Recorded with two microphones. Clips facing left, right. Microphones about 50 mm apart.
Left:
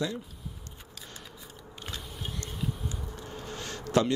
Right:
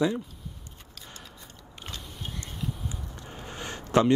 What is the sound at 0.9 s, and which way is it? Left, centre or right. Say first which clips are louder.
Scissors: right 1 dB; centre.